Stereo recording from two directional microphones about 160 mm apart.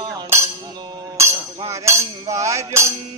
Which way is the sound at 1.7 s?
20° right (ahead or behind).